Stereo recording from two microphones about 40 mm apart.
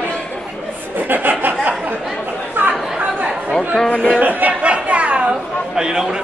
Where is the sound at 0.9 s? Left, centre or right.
Right.